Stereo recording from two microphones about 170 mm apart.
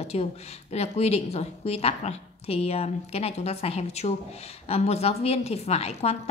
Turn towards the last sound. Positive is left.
turn(degrees=35)  # may be behind; listen again after turning